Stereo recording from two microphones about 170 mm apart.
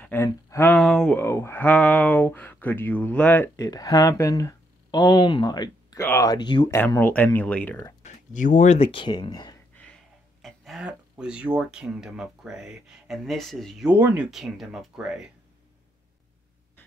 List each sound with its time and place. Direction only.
0.0 s speech: 15° left (ahead or behind)
3.6 s speech: 20° left (ahead or behind)
6.9 s speech: 10° left (ahead or behind)
8.0 s speech: 50° left (ahead or behind); by 9.6 s 25° left (ahead or behind)
10.4 s speech: centre (ahead or behind)